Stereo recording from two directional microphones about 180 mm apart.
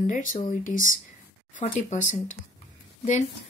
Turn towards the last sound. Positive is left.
turn(degrees=40)  # may be behind; listen again after turning